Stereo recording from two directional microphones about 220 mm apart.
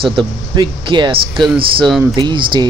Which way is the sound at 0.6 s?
20° right (ahead or behind).